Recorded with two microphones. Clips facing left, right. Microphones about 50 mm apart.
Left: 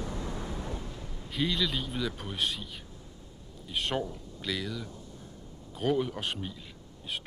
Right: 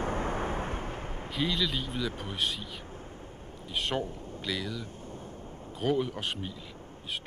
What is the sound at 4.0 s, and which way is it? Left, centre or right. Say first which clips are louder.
Speech: right 1 dB; right.